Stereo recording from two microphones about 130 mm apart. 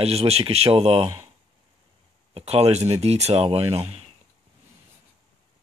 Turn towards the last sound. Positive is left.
turn(degrees=-50)  # may be behind; listen again after turning